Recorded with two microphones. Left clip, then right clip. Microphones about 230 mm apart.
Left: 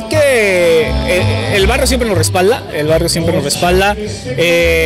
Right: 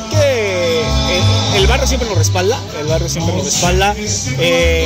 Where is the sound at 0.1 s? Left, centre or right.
Left.